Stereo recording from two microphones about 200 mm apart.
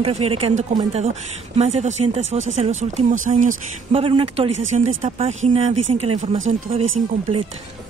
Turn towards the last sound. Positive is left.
turn(degrees=-30)  # may be behind; listen again after turning